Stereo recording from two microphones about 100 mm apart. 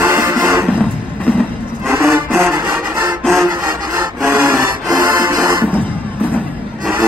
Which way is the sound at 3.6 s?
45° right (ahead or behind).